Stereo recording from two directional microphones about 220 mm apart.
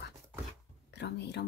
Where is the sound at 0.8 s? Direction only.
50° left (ahead or behind).